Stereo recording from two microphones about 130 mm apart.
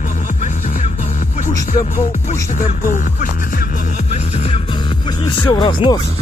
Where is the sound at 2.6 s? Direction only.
80° left.